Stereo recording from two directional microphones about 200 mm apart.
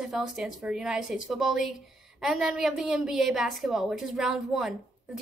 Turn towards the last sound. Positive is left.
turn(degrees=0)  # may be behind; listen again after turning